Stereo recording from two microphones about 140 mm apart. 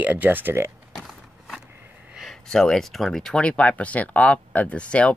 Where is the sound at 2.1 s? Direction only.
Centre (ahead or behind).